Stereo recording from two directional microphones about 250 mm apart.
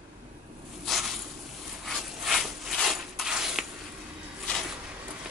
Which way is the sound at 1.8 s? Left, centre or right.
Centre.